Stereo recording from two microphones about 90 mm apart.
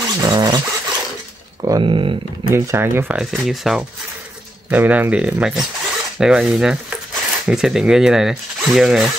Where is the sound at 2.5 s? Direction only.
30° right (ahead or behind).